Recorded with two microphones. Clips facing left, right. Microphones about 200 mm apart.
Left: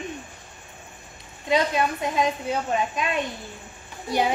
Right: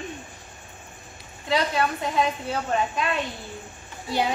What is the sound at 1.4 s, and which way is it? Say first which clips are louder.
Speech: left 2 dB; 20° left (ahead or behind).